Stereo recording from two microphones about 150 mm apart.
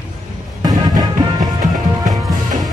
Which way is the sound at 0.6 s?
25° right (ahead or behind).